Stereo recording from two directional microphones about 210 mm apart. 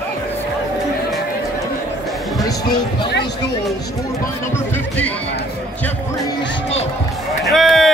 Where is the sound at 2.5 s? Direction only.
20° left (ahead or behind).